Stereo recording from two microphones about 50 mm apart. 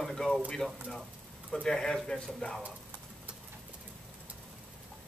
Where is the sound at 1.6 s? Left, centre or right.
Centre.